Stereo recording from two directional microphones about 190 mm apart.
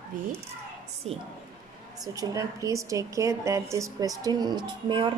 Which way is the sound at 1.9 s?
20° right (ahead or behind).